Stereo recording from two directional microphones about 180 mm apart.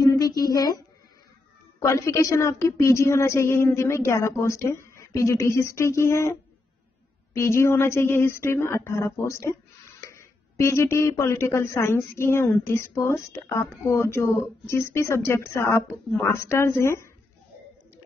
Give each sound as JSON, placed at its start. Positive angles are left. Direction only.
{"t": 0.0, "sound": "humming", "side_deg": 20}
{"t": 1.8, "sound": "speech", "side_deg": 15}
{"t": 7.3, "sound": "speech", "side_deg": 15}